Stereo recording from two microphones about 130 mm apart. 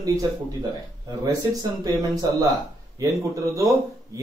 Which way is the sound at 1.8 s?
30° right (ahead or behind).